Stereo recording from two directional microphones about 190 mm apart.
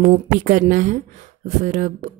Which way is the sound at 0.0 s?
40° right (ahead or behind).